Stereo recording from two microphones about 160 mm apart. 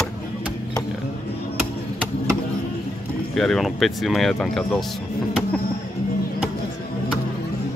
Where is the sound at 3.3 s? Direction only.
Centre (ahead or behind).